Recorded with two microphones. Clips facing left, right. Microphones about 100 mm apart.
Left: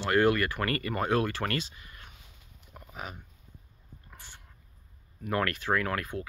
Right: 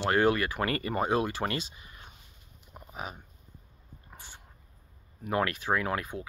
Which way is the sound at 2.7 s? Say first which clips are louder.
Right 1 dB; 20° right (ahead or behind).